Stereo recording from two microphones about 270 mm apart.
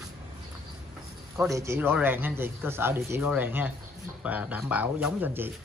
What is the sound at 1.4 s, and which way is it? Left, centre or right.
Speech, centre.